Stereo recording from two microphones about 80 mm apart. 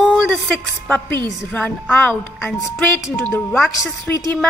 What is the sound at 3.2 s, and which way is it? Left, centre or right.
A woman's voice, centre.